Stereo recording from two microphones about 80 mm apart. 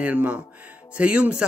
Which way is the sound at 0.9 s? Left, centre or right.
Centre.